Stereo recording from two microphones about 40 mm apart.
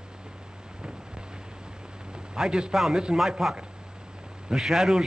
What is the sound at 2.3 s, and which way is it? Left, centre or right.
Speech, centre.